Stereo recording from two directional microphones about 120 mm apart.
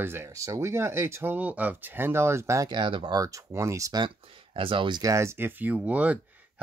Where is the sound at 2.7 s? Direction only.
45° right (ahead or behind).